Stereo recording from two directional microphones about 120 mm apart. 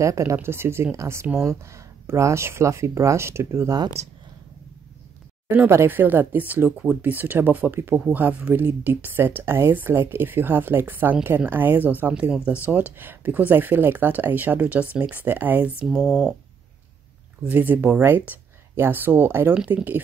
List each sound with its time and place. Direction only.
0.0 s speech: 25° right (ahead or behind)
5.5 s speech: 20° right (ahead or behind)
15.8 s speech: centre (ahead or behind)
17.5 s speech: 15° right (ahead or behind)